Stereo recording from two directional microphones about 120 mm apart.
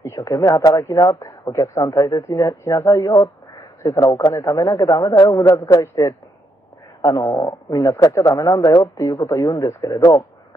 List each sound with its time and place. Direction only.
0.0 s speech: 25° left (ahead or behind)